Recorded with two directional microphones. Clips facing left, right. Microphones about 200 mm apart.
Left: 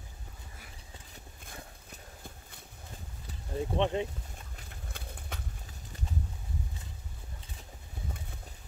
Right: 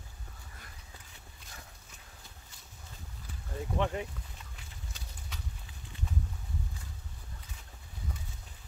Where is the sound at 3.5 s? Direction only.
25° left (ahead or behind).